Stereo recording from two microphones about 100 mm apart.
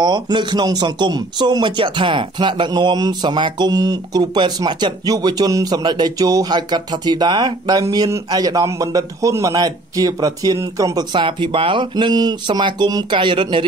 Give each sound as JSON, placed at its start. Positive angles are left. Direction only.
{"t": 0.0, "sound": "a man's voice", "side_deg": -50}
{"t": 11.0, "sound": "speech", "side_deg": -55}